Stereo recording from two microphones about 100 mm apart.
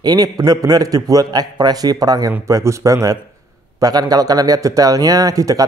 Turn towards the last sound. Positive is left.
turn(degrees=-35)  # may be behind; listen again after turning